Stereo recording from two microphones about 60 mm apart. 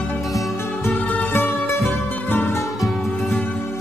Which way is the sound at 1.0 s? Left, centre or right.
Left.